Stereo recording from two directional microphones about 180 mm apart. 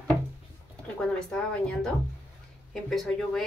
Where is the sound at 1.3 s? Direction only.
5° left (ahead or behind).